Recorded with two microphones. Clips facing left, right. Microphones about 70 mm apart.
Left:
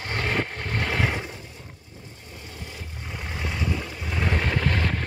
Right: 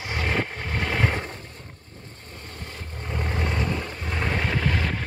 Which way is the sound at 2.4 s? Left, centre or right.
Centre.